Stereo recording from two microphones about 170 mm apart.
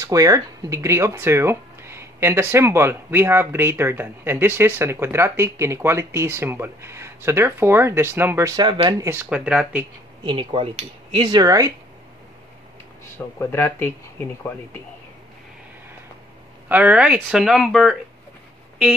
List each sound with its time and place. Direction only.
0.0 s speech: 20° right (ahead or behind)
10.2 s speech: 30° right (ahead or behind)
13.4 s speech: 15° left (ahead or behind)
16.6 s speech: 10° right (ahead or behind)